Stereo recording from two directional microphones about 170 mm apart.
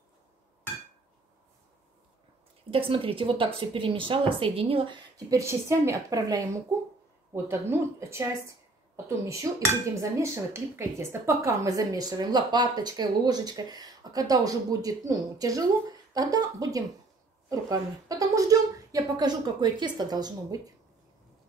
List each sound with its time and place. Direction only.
2.7 s a woman's voice: 35° right (ahead or behind)